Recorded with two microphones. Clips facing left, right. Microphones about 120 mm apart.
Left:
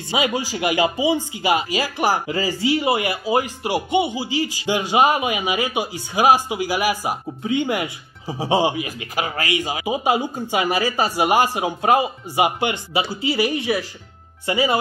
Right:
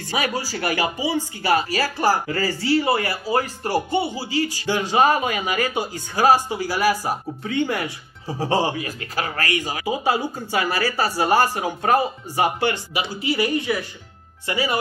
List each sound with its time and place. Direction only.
0.0 s speech: 20° left (ahead or behind)